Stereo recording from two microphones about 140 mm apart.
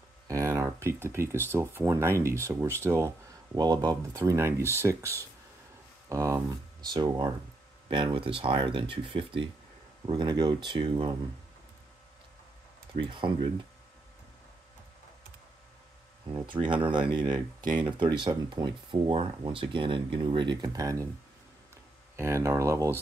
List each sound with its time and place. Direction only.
0.3 s speech: 20° right (ahead or behind)
3.5 s speech: 30° right (ahead or behind)
13.0 s speech: 35° right (ahead or behind)
16.3 s speech: 35° right (ahead or behind)
22.1 s speech: 20° right (ahead or behind)